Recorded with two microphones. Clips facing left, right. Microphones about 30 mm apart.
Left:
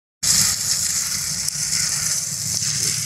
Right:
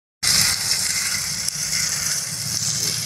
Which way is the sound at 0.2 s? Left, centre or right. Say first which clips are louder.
Right 2 dB; right.